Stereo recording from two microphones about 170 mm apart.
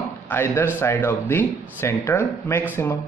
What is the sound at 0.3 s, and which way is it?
A man's voice, 15° left (ahead or behind).